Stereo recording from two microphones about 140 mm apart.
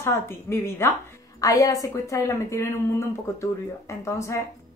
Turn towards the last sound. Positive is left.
turn(degrees=20)  # may be behind; listen again after turning